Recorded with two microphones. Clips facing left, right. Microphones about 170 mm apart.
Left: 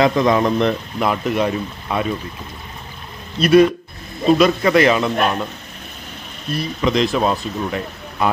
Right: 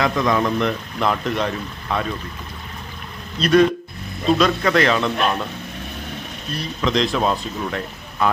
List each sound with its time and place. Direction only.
0.0 s speech: 25° left (ahead or behind)
0.9 s speech: 10° left (ahead or behind)
3.3 s speech: 10° left (ahead or behind)
6.8 s speech: 5° left (ahead or behind)